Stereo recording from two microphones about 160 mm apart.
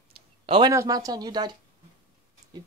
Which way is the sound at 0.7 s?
20° right (ahead or behind).